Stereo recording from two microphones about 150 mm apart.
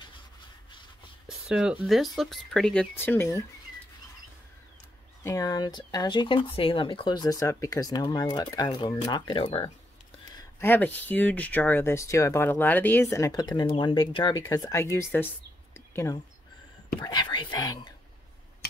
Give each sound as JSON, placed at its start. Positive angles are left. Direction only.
{"t": 1.2, "sound": "speech", "side_deg": -5}
{"t": 5.2, "sound": "speech", "side_deg": 20}
{"t": 10.6, "sound": "speech", "side_deg": 10}
{"t": 15.7, "sound": "a sound", "side_deg": 20}
{"t": 17.0, "sound": "speech", "side_deg": 30}